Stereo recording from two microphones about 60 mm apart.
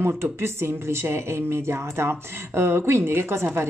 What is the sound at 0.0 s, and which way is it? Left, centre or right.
Speech, right.